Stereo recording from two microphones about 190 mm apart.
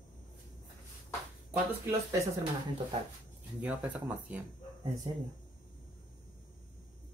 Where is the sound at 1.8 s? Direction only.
15° right (ahead or behind).